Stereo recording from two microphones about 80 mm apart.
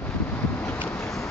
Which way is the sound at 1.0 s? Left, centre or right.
Left.